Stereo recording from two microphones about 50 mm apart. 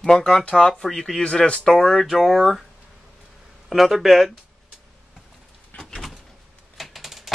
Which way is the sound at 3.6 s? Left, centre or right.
Centre.